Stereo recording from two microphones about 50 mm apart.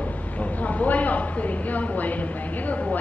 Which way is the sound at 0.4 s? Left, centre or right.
Left.